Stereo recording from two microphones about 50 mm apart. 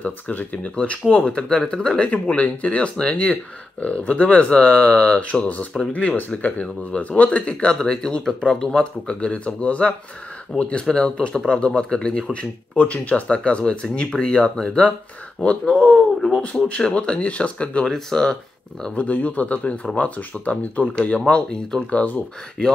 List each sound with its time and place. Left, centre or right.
0.0 s speech: left
0.7 s speech: left
2.0 s speech: left
17.8 s speech: centre
18.9 s speech: left
21.3 s speech: centre